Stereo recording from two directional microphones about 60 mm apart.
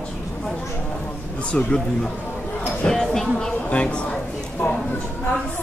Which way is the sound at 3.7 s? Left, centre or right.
Centre.